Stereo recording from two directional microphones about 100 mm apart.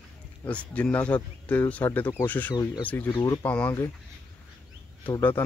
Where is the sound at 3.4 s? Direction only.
15° left (ahead or behind).